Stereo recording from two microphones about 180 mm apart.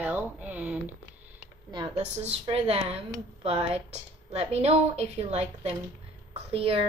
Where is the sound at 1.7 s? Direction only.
25° right (ahead or behind).